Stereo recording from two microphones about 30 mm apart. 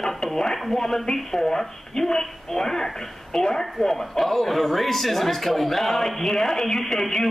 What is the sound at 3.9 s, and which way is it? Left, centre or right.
Speech, centre.